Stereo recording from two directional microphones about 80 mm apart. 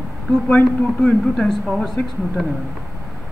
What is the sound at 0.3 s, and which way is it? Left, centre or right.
A man's voice, centre.